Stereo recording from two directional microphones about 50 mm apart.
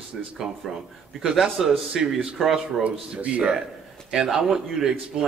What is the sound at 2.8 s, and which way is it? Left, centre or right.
Speech, right.